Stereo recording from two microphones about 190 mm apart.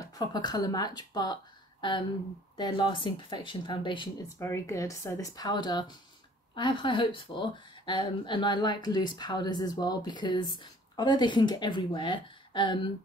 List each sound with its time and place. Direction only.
0.2 s speech: 20° left (ahead or behind)
4.4 s speech: 15° left (ahead or behind)